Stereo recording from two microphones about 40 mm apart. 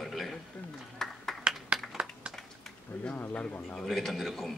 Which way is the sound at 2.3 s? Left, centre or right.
Centre.